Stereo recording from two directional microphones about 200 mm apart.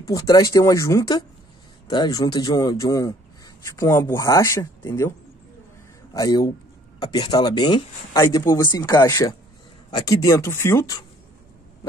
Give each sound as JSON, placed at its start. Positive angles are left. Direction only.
{"t": 0.1, "sound": "speech", "side_deg": 15}
{"t": 6.1, "sound": "speech", "side_deg": 15}